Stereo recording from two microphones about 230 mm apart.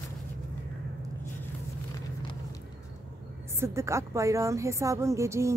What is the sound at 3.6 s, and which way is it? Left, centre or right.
A woman's voice, centre.